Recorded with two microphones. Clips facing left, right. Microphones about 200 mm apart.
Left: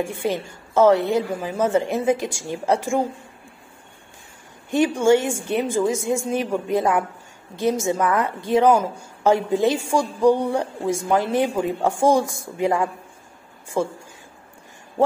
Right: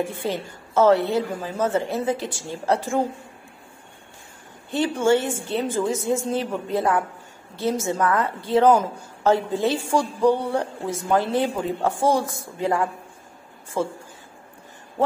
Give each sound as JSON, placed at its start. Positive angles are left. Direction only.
{"t": 0.1, "sound": "a woman's voice", "side_deg": 15}
{"t": 4.6, "sound": "a woman's voice", "side_deg": 15}